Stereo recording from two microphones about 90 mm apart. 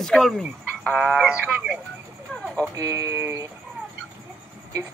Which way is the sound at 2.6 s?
40° right (ahead or behind).